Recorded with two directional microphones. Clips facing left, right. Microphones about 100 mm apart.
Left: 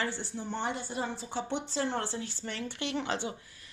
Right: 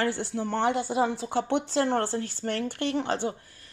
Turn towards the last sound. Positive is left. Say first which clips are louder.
# right 7 dB
turn(degrees=-45)  # may be behind; listen again after turning